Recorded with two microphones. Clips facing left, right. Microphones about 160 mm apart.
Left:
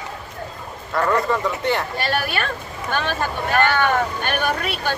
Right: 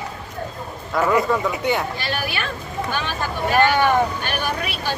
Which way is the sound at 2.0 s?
50° left (ahead or behind).